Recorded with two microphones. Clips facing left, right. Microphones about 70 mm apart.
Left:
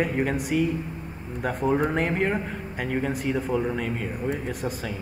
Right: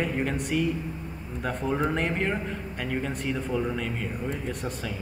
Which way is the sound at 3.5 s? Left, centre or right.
Centre.